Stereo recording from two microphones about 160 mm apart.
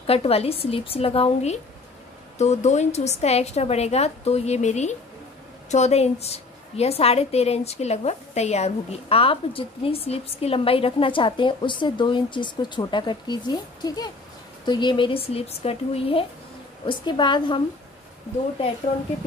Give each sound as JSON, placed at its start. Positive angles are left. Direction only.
{"t": 0.0, "sound": "a woman's voice", "side_deg": 40}